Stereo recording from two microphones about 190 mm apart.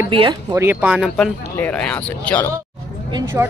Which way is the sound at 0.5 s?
10° right (ahead or behind).